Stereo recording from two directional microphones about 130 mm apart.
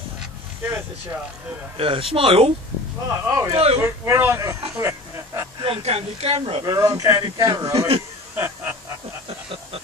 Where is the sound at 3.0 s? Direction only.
25° right (ahead or behind).